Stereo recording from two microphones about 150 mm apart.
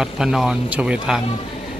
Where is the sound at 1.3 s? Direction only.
40° left (ahead or behind).